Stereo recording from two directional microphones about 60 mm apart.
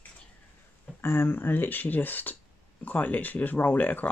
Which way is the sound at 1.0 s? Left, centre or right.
Left.